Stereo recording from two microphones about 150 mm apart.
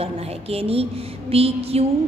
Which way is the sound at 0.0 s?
40° right (ahead or behind).